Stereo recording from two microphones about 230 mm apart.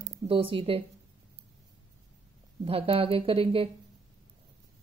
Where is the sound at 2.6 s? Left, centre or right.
Right.